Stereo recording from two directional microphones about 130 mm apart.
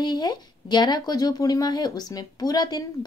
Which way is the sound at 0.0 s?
35° left (ahead or behind).